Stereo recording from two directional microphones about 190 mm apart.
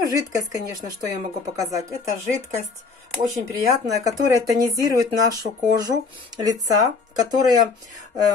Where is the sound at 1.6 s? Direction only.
15° right (ahead or behind).